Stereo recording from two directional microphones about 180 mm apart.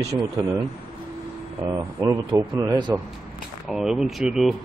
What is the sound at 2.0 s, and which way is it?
Speech, 25° right (ahead or behind).